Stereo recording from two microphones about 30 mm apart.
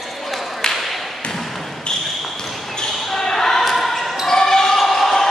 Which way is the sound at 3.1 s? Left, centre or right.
Centre.